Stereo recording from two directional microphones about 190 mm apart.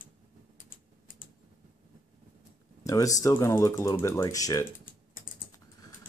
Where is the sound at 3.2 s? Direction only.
15° left (ahead or behind).